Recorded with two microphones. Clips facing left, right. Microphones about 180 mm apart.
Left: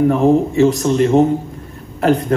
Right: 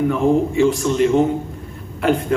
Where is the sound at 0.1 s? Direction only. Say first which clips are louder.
Left 3 dB; 40° left (ahead or behind).